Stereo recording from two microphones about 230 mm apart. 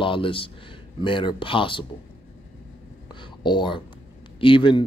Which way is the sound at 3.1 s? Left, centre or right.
Centre.